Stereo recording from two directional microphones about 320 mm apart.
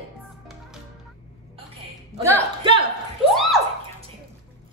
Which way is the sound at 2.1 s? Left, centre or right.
Centre.